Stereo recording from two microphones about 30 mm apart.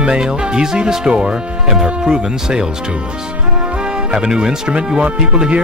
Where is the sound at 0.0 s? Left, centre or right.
Right.